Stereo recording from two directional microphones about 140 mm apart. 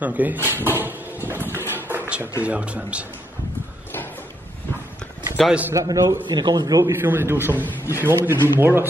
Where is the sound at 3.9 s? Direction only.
15° left (ahead or behind).